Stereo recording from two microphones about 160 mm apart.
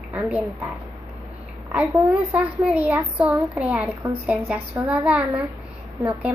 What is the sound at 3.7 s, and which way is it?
Speech, 15° right (ahead or behind).